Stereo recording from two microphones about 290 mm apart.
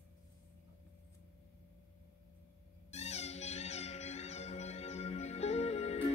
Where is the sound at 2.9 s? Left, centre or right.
Left.